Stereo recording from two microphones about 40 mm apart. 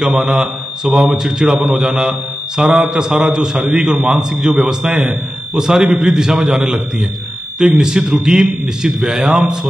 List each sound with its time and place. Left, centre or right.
0.0 s a man's voice: centre
1.6 s a man's voice: centre
7.8 s a man's voice: centre